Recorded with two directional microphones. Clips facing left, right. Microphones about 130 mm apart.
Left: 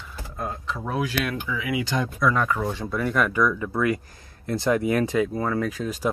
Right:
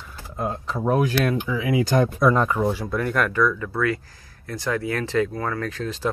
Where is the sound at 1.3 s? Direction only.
30° right (ahead or behind).